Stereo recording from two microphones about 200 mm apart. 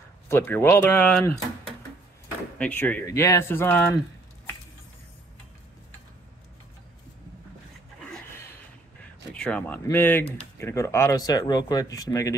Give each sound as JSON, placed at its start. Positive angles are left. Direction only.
{"t": 0.3, "sound": "speech", "side_deg": 10}
{"t": 2.6, "sound": "speech", "side_deg": 10}
{"t": 9.3, "sound": "speech", "side_deg": 5}